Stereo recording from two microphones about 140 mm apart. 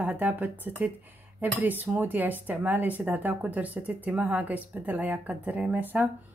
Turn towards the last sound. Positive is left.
turn(degrees=-15)  # may be behind; listen again after turning